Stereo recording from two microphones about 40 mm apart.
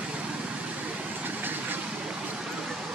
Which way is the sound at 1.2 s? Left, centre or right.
Right.